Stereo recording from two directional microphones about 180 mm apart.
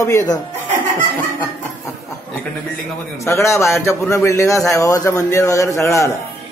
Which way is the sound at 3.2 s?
15° left (ahead or behind).